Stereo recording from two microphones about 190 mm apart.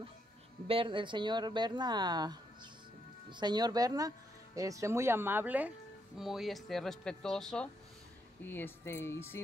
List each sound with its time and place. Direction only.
0.7 s speech: 25° right (ahead or behind); by 9.4 s 15° left (ahead or behind)